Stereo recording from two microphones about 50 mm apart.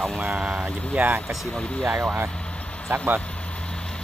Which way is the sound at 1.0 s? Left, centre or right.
Right.